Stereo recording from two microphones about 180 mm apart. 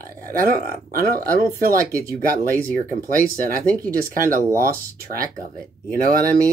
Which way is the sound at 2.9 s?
50° right (ahead or behind).